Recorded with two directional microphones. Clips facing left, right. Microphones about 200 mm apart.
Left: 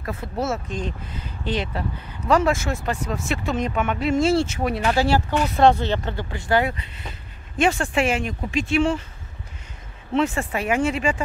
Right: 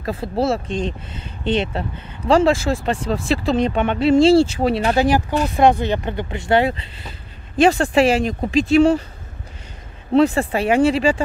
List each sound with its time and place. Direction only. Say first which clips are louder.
0.0 s speech: right 6 dB; 30° right (ahead or behind)
5.6 s speech: right 2 dB; 15° right (ahead or behind); by 9.0 s 40° right (ahead or behind)
10.1 s speech: right 7 dB; 35° right (ahead or behind)